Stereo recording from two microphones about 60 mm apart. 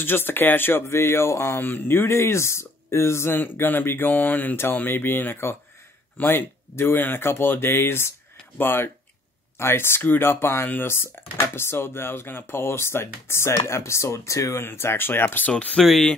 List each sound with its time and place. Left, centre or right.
0.0 s speech: left
1.6 s speech: left
3.3 s speech: left
14.6 s speech: left
15.4 s speech: left
15.8 s speech: centre